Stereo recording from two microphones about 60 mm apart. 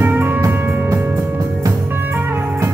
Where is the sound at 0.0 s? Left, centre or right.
Right.